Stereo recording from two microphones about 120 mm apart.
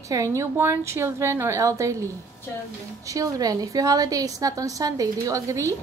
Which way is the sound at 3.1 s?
30° right (ahead or behind).